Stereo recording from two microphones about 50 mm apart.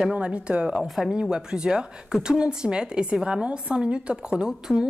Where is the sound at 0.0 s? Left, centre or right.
Right.